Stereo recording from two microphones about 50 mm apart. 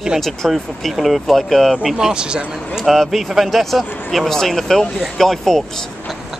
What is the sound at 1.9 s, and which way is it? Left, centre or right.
Speech, centre.